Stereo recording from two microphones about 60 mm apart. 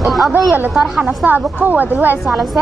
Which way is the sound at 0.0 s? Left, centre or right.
Centre.